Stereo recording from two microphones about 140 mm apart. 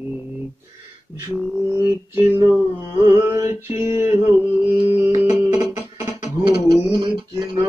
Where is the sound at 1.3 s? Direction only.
15° right (ahead or behind).